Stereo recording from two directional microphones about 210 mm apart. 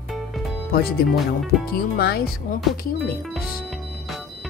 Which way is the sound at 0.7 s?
45° left (ahead or behind).